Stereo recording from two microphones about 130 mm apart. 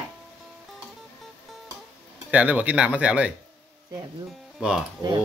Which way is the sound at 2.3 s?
10° right (ahead or behind).